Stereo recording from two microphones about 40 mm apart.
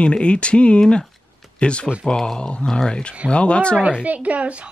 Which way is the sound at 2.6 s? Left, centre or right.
Centre.